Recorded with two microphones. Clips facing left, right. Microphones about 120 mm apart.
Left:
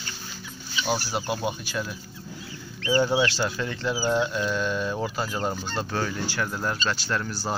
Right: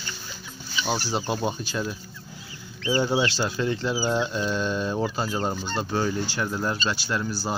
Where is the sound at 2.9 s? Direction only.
15° right (ahead or behind).